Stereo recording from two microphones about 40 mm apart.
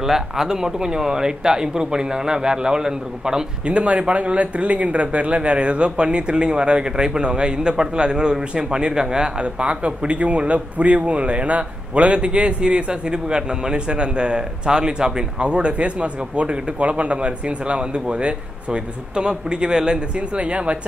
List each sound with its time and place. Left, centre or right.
0.0 s speech: centre
3.6 s speech: right